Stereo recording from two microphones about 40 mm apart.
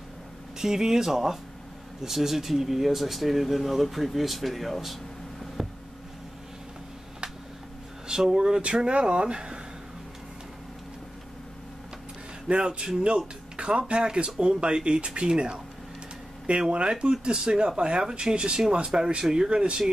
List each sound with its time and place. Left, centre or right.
0.6 s speech: centre
5.6 s a sound: centre
8.1 s speech: centre
12.4 s speech: right
16.7 s speech: right